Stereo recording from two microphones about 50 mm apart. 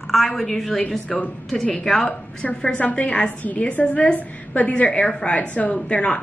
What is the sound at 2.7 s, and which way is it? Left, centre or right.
A woman's voice, left.